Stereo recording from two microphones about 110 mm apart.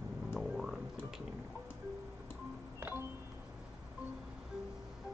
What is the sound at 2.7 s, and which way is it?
Music, 20° right (ahead or behind).